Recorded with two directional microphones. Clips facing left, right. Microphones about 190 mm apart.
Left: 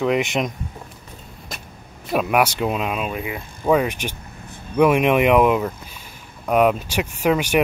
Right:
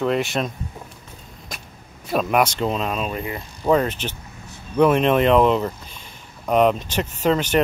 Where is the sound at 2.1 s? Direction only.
10° left (ahead or behind).